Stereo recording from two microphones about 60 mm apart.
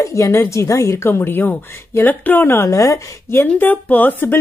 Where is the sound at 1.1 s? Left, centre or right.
Left.